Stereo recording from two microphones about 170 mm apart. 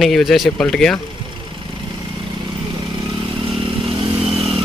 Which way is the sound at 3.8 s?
30° right (ahead or behind).